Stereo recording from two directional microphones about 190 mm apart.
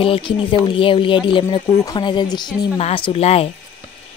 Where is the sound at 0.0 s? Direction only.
30° left (ahead or behind).